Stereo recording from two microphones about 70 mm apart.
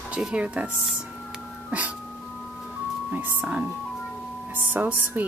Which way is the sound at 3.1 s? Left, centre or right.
Right.